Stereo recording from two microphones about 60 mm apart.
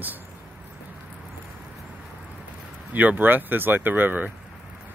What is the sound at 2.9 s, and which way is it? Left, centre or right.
Speech, right.